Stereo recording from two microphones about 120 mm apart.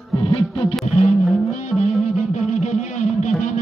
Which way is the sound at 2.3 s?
70° left (ahead or behind).